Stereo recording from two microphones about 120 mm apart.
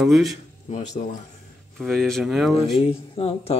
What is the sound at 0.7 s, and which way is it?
Speech, 90° left.